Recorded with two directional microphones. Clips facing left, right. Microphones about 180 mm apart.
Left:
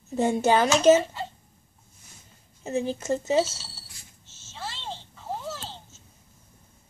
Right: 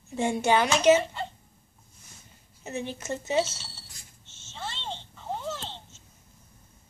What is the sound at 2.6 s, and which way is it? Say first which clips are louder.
Speech: left 6 dB; 30° left (ahead or behind).